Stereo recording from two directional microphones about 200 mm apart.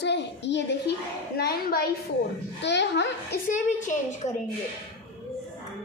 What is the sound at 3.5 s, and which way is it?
Speech, 40° left (ahead or behind).